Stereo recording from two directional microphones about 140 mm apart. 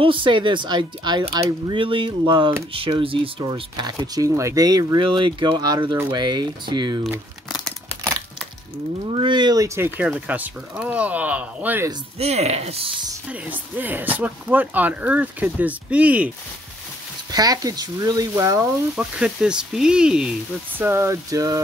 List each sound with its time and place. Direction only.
0.0 s speech: 35° right (ahead or behind)
7.5 s a sound: centre (ahead or behind)
9.1 s speech: 35° right (ahead or behind)
9.9 s speech: 10° right (ahead or behind)
12.2 s speech: 50° right (ahead or behind)
13.3 s speech: 10° right (ahead or behind)
17.3 s speech: 25° right (ahead or behind)
18.9 s speech: 5° right (ahead or behind); by 21.5 s 25° right (ahead or behind)